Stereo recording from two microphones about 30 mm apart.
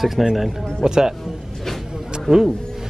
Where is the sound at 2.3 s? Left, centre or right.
Centre.